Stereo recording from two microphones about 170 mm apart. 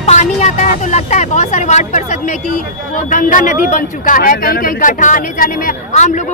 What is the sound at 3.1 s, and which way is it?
Speech, 50° left (ahead or behind).